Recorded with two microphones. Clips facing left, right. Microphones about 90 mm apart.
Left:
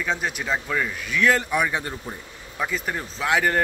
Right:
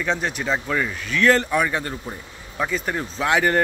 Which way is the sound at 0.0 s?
5° left (ahead or behind).